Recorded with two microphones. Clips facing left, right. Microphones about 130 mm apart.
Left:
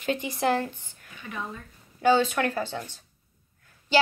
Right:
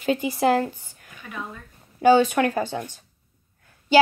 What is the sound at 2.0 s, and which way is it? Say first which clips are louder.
Speech: right 5 dB; 15° right (ahead or behind).